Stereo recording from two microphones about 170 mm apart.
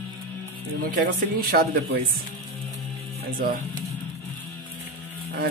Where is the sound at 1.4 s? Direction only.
65° right (ahead or behind).